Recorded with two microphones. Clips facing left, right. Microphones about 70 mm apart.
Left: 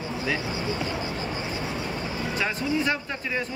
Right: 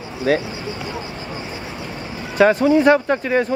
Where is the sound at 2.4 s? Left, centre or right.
Right.